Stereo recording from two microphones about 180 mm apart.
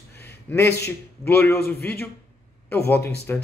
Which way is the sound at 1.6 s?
60° left (ahead or behind).